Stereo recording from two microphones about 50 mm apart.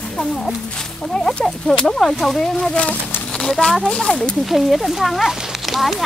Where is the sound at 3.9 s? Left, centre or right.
Centre.